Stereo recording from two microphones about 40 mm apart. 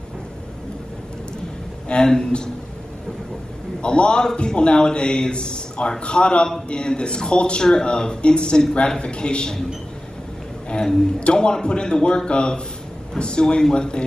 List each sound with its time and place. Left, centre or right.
1.9 s a woman's voice: centre
3.8 s a man's voice: left
10.7 s a man's voice: centre